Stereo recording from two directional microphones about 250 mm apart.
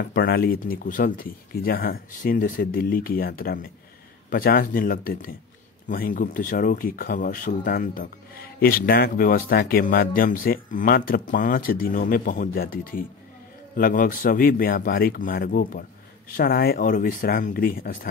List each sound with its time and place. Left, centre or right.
0.0 s speech: left